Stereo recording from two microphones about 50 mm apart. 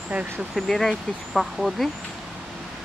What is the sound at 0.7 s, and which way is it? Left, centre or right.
Speech, centre.